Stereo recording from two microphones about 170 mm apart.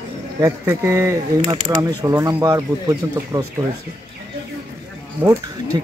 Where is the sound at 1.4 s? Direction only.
25° right (ahead or behind).